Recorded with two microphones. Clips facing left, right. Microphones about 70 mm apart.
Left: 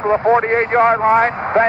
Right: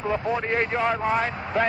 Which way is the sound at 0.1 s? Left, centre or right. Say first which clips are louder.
Left 12 dB; left.